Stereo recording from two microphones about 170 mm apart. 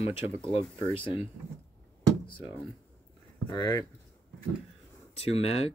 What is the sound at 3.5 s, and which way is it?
Speech, 25° left (ahead or behind).